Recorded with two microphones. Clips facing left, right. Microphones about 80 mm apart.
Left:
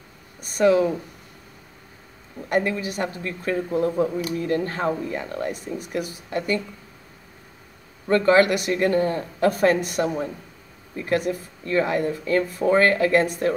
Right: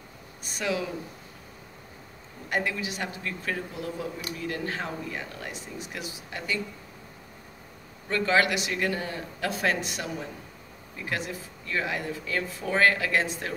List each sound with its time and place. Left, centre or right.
0.4 s a woman's voice: left
2.5 s a woman's voice: left
8.1 s a woman's voice: left